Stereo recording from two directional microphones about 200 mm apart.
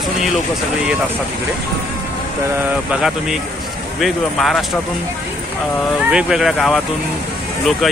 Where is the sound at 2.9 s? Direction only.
Centre (ahead or behind).